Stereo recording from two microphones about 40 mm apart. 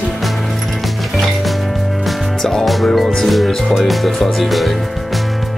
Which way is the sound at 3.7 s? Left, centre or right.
Centre.